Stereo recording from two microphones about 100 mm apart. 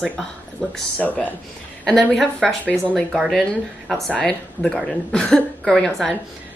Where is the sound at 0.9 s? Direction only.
15° left (ahead or behind).